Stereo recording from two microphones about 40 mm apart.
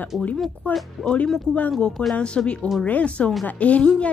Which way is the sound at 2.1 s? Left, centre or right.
Left.